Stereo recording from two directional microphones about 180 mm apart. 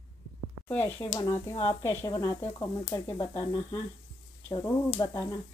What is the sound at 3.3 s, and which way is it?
Speech, 25° left (ahead or behind).